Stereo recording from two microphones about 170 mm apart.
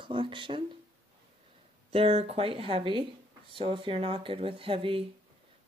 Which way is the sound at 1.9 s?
35° right (ahead or behind).